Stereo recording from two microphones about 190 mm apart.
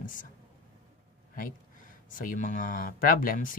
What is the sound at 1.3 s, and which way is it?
Speech, 45° left (ahead or behind).